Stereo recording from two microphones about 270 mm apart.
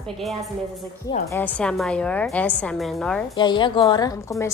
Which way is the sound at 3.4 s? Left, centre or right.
Centre.